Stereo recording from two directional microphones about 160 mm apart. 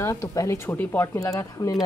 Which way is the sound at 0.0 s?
20° left (ahead or behind).